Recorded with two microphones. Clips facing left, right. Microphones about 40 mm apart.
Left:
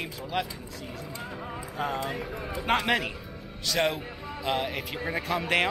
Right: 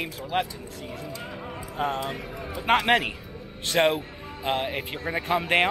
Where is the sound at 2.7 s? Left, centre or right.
Right.